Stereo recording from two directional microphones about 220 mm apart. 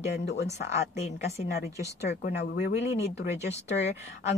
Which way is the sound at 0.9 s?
30° left (ahead or behind).